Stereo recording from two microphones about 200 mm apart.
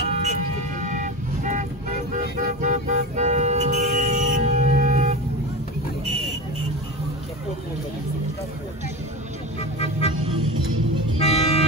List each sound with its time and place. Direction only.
0.1 s vehicle: 35° right (ahead or behind)
2.1 s music: 40° right (ahead or behind)
9.6 s vehicle: 30° left (ahead or behind)
11.1 s music: 30° left (ahead or behind)